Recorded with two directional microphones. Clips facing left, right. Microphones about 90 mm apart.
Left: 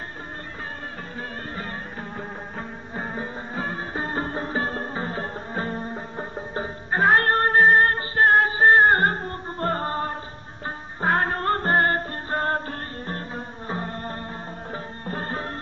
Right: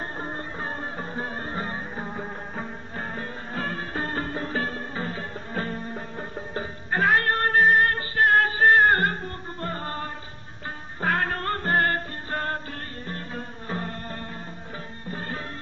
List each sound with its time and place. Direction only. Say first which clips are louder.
1.1 s music: right 2 dB; 25° right (ahead or behind)
3.0 s music: left 3 dB; 15° left (ahead or behind); by 9.8 s 40° left (ahead or behind)
9.8 s music: left 5 dB; 30° left (ahead or behind)
15.0 s music: left 4 dB; 40° left (ahead or behind)